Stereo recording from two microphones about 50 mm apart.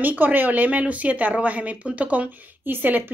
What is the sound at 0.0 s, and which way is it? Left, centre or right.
Speech, right.